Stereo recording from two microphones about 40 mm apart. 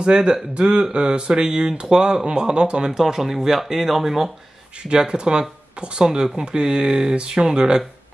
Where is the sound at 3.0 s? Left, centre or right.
Centre.